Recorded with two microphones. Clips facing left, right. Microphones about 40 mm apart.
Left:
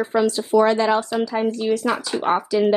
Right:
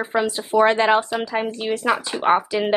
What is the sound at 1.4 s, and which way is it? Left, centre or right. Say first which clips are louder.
A woman's voice: left 2 dB; right.